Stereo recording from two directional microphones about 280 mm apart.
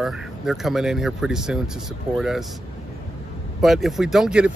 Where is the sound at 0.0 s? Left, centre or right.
Centre.